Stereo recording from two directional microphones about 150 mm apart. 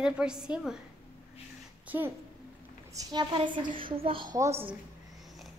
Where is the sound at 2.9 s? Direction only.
25° right (ahead or behind).